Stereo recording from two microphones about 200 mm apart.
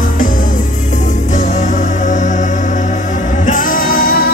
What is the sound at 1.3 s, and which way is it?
Music, 35° left (ahead or behind).